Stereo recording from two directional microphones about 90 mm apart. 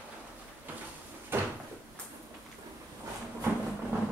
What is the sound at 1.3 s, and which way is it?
Door, 25° right (ahead or behind).